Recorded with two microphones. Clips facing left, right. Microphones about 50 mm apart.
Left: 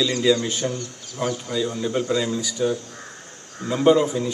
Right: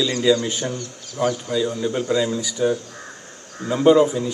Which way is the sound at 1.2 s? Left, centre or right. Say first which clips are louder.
Right 3 dB; right.